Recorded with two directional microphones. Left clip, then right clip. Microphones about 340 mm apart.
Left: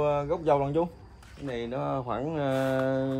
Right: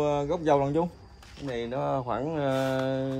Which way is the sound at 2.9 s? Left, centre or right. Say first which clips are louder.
Left 1 dB; centre.